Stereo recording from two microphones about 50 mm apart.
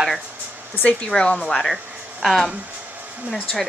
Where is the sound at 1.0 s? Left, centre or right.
Left.